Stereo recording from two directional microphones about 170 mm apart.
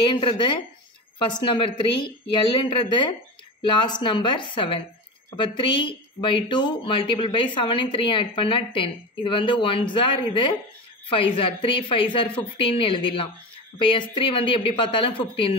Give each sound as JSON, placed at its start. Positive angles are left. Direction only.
{"t": 0.0, "sound": "a woman's voice", "side_deg": 30}